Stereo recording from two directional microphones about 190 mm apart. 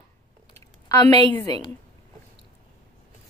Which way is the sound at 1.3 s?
20° left (ahead or behind).